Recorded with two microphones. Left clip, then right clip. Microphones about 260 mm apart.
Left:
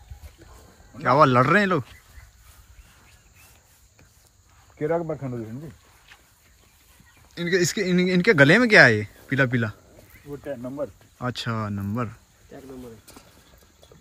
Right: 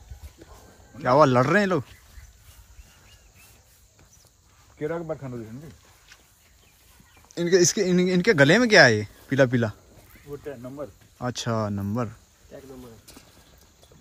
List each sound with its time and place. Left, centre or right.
0.9 s speech: centre
4.7 s speech: left
7.3 s speech: centre
10.4 s speech: left
11.1 s speech: centre